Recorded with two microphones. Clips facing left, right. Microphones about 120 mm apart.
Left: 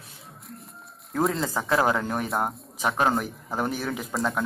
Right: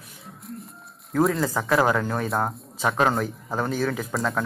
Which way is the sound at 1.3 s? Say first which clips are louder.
Right 2 dB; 25° left (ahead or behind).